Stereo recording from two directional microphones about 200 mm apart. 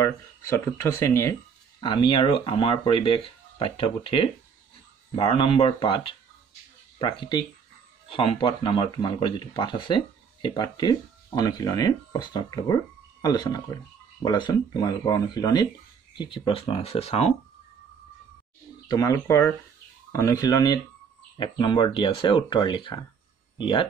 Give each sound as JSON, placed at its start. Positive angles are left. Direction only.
{"t": 0.0, "sound": "speech", "side_deg": 15}
{"t": 18.9, "sound": "speech", "side_deg": 20}